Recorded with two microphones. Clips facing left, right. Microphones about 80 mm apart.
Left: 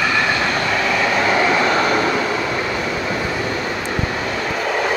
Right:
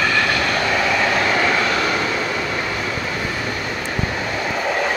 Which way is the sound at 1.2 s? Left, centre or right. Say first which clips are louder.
Left 2 dB; centre.